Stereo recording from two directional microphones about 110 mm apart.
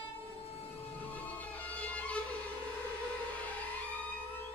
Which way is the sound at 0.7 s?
15° left (ahead or behind).